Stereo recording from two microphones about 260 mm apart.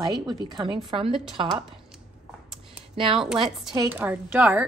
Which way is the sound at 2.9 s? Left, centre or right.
Centre.